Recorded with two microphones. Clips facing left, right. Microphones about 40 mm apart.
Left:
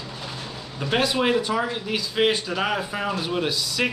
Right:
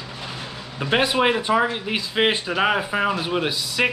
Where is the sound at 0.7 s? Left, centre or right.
Right.